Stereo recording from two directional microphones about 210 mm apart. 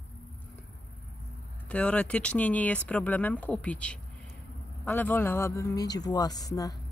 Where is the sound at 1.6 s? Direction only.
5° left (ahead or behind).